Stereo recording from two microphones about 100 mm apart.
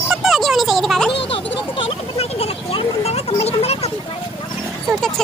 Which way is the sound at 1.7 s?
85° left.